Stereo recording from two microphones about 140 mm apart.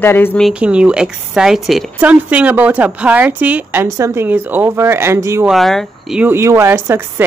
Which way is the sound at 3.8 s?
20° right (ahead or behind).